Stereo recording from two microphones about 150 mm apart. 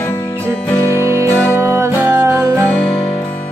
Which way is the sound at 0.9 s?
20° right (ahead or behind).